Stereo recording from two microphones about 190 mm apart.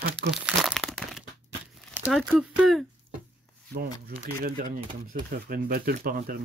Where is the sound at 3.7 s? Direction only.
50° right (ahead or behind).